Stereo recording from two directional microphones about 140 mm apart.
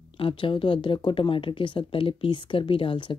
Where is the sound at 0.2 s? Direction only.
40° left (ahead or behind).